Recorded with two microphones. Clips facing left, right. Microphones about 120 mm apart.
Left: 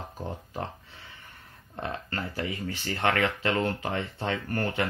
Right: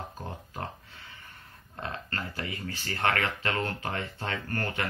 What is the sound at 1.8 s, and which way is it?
Speech, 20° left (ahead or behind).